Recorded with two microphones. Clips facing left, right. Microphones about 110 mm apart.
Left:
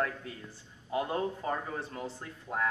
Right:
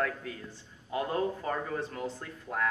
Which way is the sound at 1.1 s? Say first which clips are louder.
Right 1 dB; 25° left (ahead or behind).